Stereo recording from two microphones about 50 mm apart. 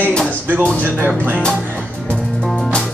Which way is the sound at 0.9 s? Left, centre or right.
Right.